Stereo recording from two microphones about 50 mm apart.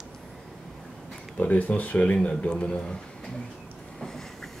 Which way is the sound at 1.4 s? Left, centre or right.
Left.